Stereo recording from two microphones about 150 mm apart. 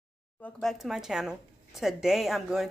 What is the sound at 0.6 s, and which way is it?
A woman's voice, centre (ahead or behind).